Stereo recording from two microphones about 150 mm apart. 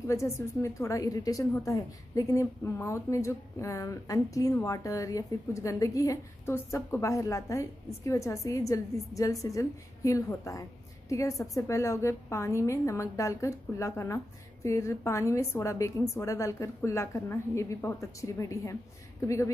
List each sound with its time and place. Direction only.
0.0 s a woman's voice: 20° left (ahead or behind)